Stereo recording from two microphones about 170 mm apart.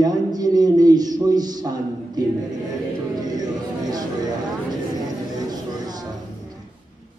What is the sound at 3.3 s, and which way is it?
Speech, 25° right (ahead or behind).